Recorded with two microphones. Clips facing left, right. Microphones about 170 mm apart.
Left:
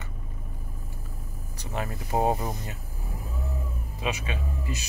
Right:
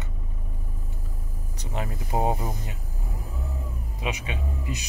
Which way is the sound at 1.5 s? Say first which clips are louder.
Even; 20° right (ahead or behind).